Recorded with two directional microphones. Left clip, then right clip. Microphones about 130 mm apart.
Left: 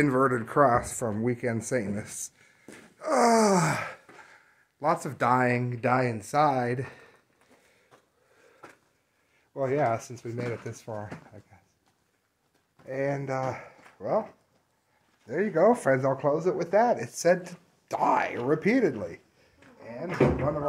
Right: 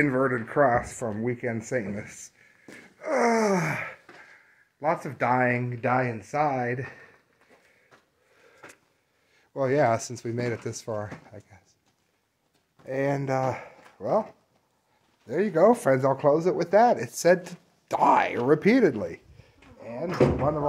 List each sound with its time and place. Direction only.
0.0 s speech: 15° left (ahead or behind)
4.7 s speech: 15° left (ahead or behind)
9.5 s speech: 40° right (ahead or behind)
12.8 s speech: 35° right (ahead or behind)
13.9 s speech: 20° right (ahead or behind)
15.2 s speech: 40° right (ahead or behind)
15.6 s speech: 20° right (ahead or behind)
16.3 s speech: 90° right; by 18.5 s 70° right (ahead or behind)
18.9 s speech: 40° right (ahead or behind)
19.8 s speech: 90° right